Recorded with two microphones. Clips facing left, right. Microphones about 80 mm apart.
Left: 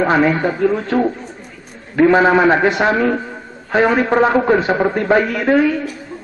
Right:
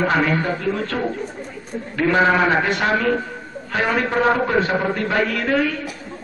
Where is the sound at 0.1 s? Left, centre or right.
Centre.